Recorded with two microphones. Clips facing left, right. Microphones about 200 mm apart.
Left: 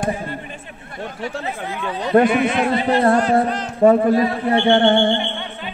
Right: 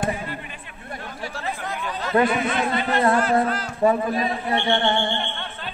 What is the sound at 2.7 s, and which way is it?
Speech, 30° left (ahead or behind).